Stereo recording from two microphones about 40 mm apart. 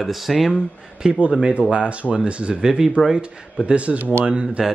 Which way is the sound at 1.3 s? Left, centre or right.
Right.